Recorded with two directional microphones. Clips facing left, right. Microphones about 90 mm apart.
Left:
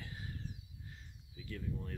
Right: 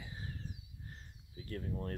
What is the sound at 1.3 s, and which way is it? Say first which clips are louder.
Speech: right 2 dB; 45° right (ahead or behind).